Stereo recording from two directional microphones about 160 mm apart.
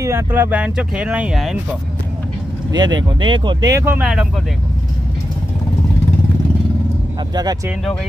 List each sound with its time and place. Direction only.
0.0 s speech: 15° right (ahead or behind)
2.7 s speech: 30° right (ahead or behind)
3.8 s speech: 10° right (ahead or behind)
7.3 s speech: 25° right (ahead or behind)